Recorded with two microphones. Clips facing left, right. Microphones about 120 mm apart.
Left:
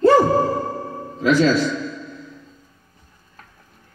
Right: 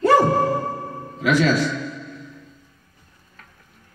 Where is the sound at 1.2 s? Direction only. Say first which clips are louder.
Left 3 dB; 30° left (ahead or behind).